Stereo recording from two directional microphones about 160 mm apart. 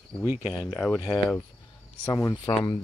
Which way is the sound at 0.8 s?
Centre (ahead or behind).